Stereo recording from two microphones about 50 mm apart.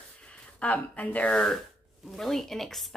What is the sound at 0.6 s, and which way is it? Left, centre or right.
Speech, left.